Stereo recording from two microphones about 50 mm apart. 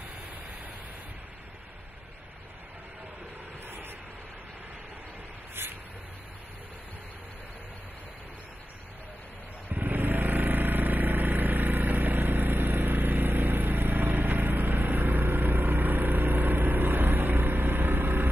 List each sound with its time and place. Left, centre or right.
3.6 s vehicle: right
5.6 s a sound: right
9.7 s motorcycle: right